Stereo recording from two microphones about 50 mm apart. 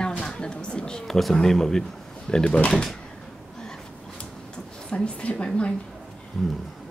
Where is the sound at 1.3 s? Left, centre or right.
Centre.